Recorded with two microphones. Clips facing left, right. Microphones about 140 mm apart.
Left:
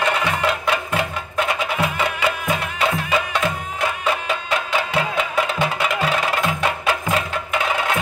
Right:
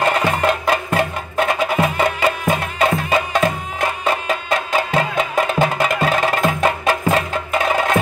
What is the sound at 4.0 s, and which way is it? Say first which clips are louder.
Music: right 2 dB; 40° right (ahead or behind).